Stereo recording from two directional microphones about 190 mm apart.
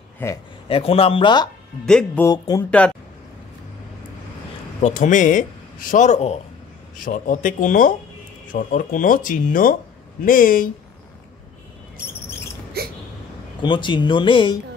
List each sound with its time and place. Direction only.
0.2 s speech: 10° left (ahead or behind)
0.7 s speech: 30° left (ahead or behind)
1.9 s speech: 5° left (ahead or behind)
2.2 s speech: 20° left (ahead or behind)
4.8 s a man's voice: 40° left (ahead or behind)
13.6 s speech: 25° left (ahead or behind)